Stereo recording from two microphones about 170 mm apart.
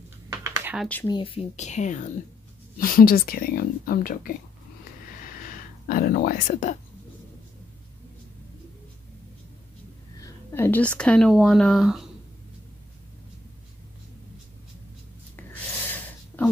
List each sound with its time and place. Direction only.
0.3 s computer keyboard: 15° right (ahead or behind)
1.0 s speech: 30° left (ahead or behind); by 2.1 s 45° left (ahead or behind)
2.8 s speech: 55° left (ahead or behind)
5.9 s speech: 60° left (ahead or behind)
10.1 s a sound: 15° left (ahead or behind)
11.0 s speech: 5° left (ahead or behind)